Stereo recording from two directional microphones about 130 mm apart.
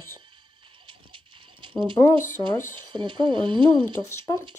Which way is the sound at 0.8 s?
40° right (ahead or behind).